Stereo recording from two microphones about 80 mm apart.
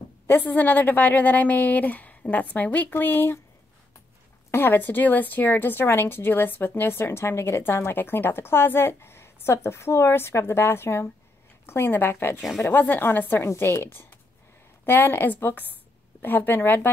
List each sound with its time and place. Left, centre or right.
0.3 s a woman's voice: left
4.5 s a woman's voice: left
12.4 s speech: centre
12.6 s a woman's voice: left
13.4 s a woman's voice: left